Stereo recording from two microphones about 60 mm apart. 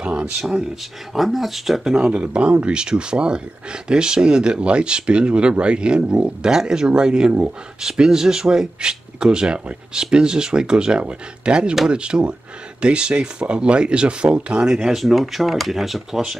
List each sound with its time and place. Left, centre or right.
0.0 s speech: centre
1.1 s speech: centre
1.9 s speech: centre